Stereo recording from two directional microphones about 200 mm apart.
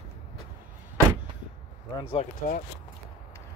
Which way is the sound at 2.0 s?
30° left (ahead or behind).